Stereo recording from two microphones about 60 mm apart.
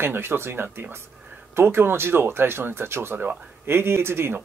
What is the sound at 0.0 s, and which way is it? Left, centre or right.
Speech, right.